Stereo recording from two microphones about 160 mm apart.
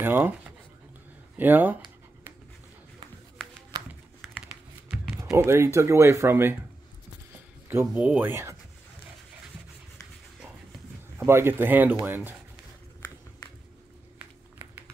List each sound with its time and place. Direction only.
0.0 s speech: 15° right (ahead or behind)
1.3 s speech: 10° right (ahead or behind)
5.1 s speech: 15° right (ahead or behind)
7.7 s speech: 10° right (ahead or behind)
11.1 s speech: 15° right (ahead or behind)